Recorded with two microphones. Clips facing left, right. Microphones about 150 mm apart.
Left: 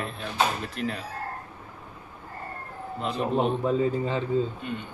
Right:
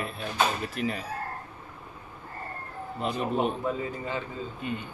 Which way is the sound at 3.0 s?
Centre (ahead or behind).